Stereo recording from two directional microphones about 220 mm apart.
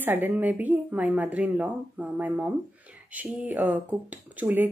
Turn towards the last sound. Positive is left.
turn(degrees=-10)  # may be behind; listen again after turning